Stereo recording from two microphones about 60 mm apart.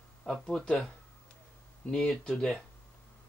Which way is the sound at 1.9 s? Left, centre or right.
Centre.